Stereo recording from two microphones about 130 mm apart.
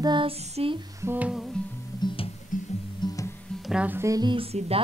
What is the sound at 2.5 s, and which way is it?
Music, 90° left.